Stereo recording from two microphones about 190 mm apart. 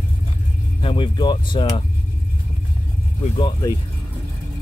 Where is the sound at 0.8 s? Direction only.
25° left (ahead or behind).